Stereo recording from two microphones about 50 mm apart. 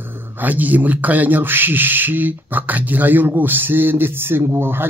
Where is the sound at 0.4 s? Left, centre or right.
Right.